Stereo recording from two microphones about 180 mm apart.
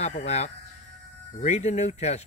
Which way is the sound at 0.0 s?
40° left (ahead or behind).